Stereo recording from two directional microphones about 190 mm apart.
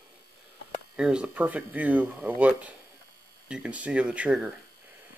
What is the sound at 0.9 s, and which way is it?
Speech, 5° right (ahead or behind).